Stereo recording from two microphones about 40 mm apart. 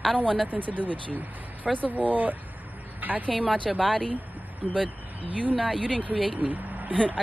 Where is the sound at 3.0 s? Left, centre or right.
Right.